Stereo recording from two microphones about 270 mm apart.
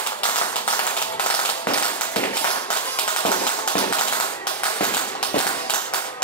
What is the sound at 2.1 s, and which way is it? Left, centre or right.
Tap, centre.